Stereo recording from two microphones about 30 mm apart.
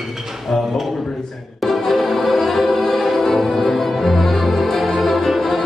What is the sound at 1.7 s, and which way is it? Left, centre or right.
Music, centre.